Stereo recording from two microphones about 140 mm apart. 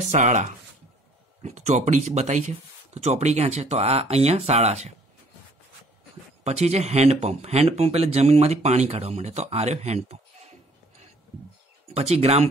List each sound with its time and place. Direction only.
0.1 s speech: 55° right (ahead or behind)
6.4 s speech: 50° right (ahead or behind)
11.9 s speech: 50° right (ahead or behind)